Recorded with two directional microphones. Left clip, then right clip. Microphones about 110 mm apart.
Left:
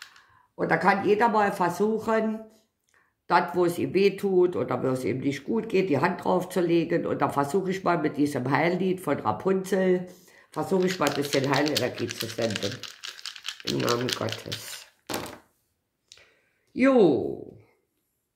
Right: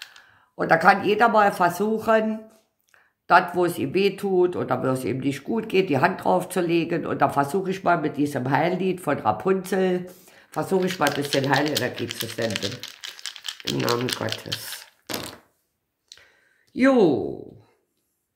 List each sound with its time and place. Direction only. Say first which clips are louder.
0.6 s speech: right 5 dB; 60° right (ahead or behind); by 14.7 s 30° right (ahead or behind)
16.7 s speech: right 2 dB; 35° right (ahead or behind)